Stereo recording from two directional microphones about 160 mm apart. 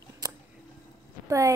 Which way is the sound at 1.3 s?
20° right (ahead or behind).